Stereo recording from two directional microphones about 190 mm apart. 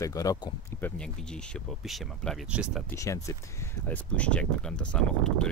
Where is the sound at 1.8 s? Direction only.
5° right (ahead or behind).